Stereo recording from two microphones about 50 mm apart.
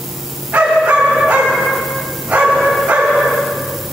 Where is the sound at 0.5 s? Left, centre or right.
Right.